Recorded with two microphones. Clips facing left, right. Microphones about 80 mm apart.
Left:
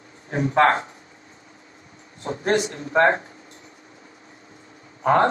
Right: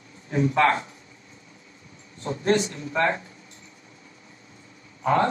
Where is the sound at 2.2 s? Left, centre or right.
Left.